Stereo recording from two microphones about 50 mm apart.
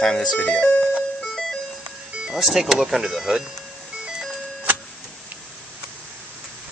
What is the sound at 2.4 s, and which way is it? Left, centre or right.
Speech, centre.